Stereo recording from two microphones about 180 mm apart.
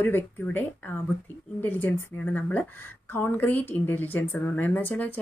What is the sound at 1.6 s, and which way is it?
Speech, 10° left (ahead or behind).